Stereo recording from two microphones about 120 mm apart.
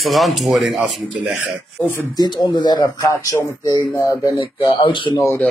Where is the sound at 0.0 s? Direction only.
Centre (ahead or behind).